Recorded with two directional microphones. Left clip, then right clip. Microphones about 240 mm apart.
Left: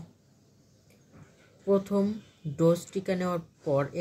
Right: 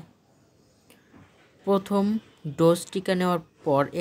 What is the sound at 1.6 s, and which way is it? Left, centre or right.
Speech, right.